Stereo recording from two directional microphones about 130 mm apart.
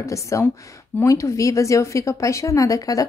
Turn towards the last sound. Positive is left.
turn(degrees=25)  # may be behind; listen again after turning